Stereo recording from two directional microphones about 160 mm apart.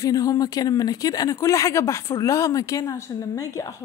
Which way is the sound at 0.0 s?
20° left (ahead or behind).